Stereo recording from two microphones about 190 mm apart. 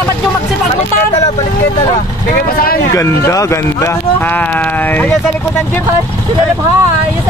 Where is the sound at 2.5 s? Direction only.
50° left (ahead or behind).